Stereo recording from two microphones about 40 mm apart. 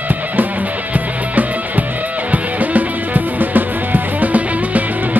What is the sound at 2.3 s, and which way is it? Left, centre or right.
Music, right.